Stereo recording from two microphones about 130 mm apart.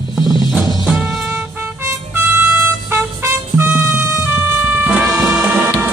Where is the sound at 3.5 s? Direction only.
15° right (ahead or behind).